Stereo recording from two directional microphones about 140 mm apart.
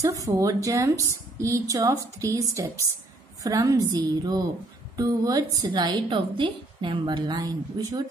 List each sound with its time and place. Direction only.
0.0 s a woman's voice: 20° right (ahead or behind)